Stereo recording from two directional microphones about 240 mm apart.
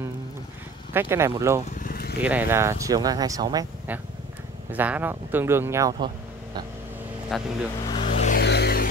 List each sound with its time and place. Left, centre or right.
0.9 s speech: centre
1.8 s vehicle: left
2.2 s speech: centre
7.3 s speech: centre
7.8 s vehicle: left
8.4 s a sound: left